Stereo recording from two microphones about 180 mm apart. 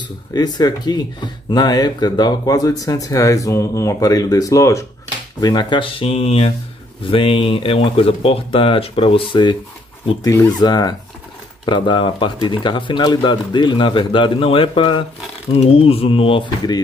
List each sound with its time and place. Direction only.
0.3 s speech: 20° left (ahead or behind)